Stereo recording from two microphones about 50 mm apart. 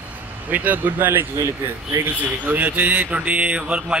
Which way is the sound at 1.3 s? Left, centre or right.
Right.